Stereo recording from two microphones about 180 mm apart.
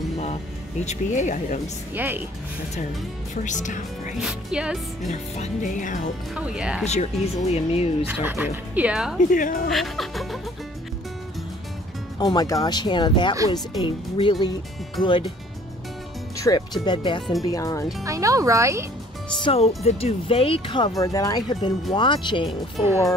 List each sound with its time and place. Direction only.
0.2 s speech: 40° left (ahead or behind)
2.0 s speech: 10° right (ahead or behind)
3.4 s speech: 45° left (ahead or behind)
4.2 s speech: 5° right (ahead or behind)
5.1 s speech: 45° left (ahead or behind)
6.3 s speech: 5° right (ahead or behind)
6.8 s speech: 40° left (ahead or behind)
8.1 s speech: 10° right (ahead or behind)
9.3 s speech: 50° left (ahead or behind)
9.7 s speech: centre (ahead or behind)
12.2 s speech: 20° left (ahead or behind)
16.3 s speech: 20° left (ahead or behind)
18.0 s speech: 15° right (ahead or behind)
19.4 s speech: 35° left (ahead or behind)